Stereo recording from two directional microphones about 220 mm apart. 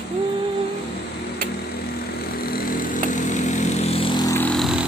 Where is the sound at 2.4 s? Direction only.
40° left (ahead or behind).